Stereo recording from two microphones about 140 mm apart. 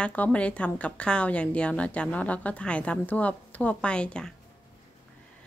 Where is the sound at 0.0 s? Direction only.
10° left (ahead or behind).